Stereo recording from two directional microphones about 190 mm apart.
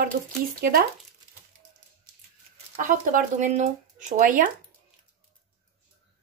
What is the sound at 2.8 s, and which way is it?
Speech, 45° right (ahead or behind).